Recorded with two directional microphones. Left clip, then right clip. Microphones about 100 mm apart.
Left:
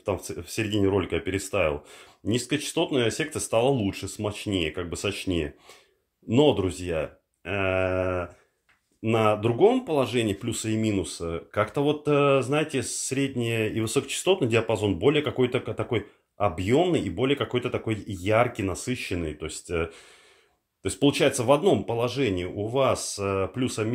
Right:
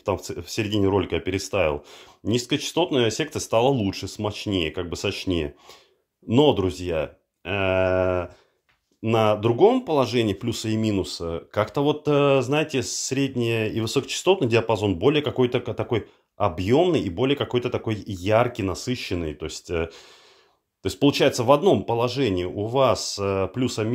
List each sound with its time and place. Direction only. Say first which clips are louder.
0.0 s speech: right 3 dB; 45° right (ahead or behind); by 8.3 s 65° right (ahead or behind)
9.0 s speech: right 3 dB; 40° right (ahead or behind)
9.8 s speech: right 3 dB; 60° right (ahead or behind)